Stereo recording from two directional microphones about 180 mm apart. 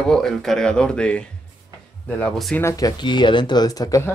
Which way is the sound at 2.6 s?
20° left (ahead or behind).